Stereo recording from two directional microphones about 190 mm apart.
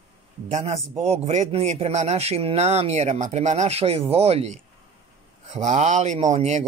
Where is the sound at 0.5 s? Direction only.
35° right (ahead or behind).